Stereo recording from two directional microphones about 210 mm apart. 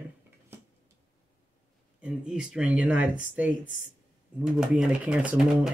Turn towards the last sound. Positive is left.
turn(degrees=-5)  # may be behind; listen again after turning